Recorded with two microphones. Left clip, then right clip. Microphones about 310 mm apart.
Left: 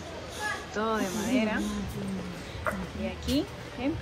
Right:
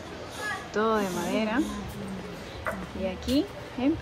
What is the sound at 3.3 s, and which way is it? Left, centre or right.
Speech, centre.